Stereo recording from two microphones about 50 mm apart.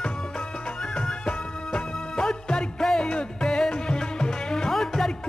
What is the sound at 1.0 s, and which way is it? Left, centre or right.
Music of bollywood, left.